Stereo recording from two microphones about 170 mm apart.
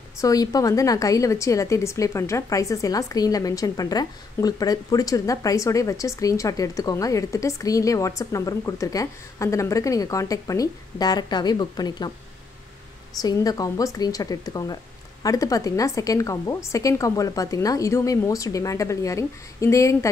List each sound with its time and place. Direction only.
0.2 s a woman's voice: 20° left (ahead or behind)
13.2 s a woman's voice: 20° left (ahead or behind)